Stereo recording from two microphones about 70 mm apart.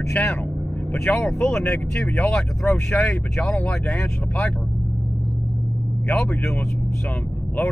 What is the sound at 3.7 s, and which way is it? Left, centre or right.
Speech, centre.